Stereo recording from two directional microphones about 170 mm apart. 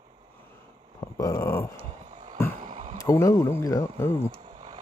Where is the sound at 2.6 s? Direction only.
45° right (ahead or behind).